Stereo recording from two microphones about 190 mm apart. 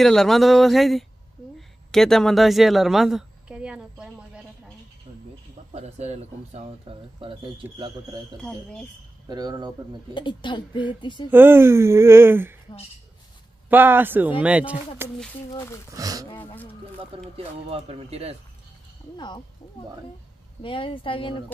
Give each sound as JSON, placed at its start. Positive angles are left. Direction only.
{"t": 0.0, "sound": "a woman's voice", "side_deg": 0}
{"t": 5.7, "sound": "speech", "side_deg": -35}
{"t": 8.4, "sound": "speech", "side_deg": 5}
{"t": 9.3, "sound": "speech", "side_deg": -20}
{"t": 10.1, "sound": "a woman's voice", "side_deg": 25}
{"t": 11.2, "sound": "speech", "side_deg": -10}
{"t": 13.7, "sound": "speech", "side_deg": -10}
{"t": 15.5, "sound": "speech", "side_deg": 15}
{"t": 15.9, "sound": "speech", "side_deg": -20}
{"t": 17.0, "sound": "speech", "side_deg": -30}
{"t": 19.1, "sound": "a woman's voice", "side_deg": 25}
{"t": 20.6, "sound": "a woman's voice", "side_deg": 25}